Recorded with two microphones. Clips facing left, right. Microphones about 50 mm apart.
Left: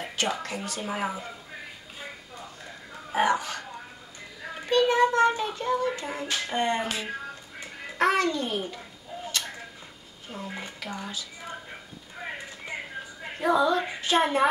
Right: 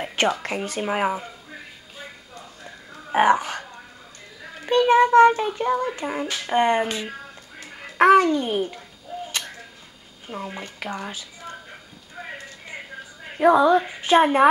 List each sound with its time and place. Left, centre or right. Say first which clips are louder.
0.0 s a sound: right 7 dB; right
0.4 s a woman's voice: right 6 dB; right
3.1 s a woman's voice: right 6 dB; right
4.6 s speech: right 5 dB; right
8.0 s speech: right 9 dB; right
10.3 s a woman's voice: right 4 dB; right
13.4 s a woman's voice: right 7 dB; right